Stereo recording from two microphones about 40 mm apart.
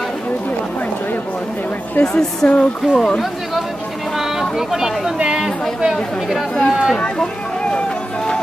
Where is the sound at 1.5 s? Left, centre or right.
Left.